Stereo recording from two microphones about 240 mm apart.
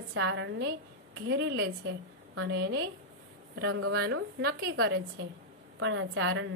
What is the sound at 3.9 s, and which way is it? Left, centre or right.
A woman's voice, right.